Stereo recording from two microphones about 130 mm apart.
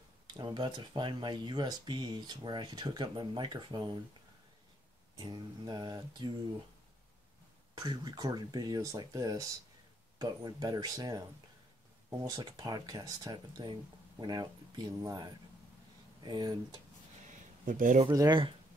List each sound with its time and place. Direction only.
0.3 s speech: 35° right (ahead or behind)
5.1 s speech: 30° right (ahead or behind)
7.7 s speech: 35° right (ahead or behind)
16.3 s speech: 35° right (ahead or behind)
17.3 s a sound: 90° right
18.0 s speech: 30° right (ahead or behind)